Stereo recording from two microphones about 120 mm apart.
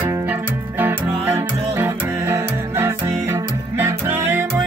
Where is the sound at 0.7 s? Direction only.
15° right (ahead or behind).